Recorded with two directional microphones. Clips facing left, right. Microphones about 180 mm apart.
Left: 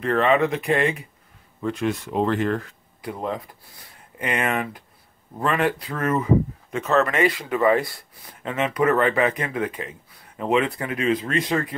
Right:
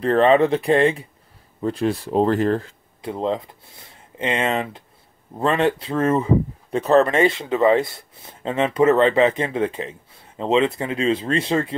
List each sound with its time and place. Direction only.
0.0 s speech: 30° right (ahead or behind)